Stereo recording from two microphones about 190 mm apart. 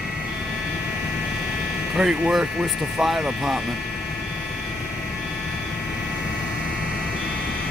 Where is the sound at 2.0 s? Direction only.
5° right (ahead or behind).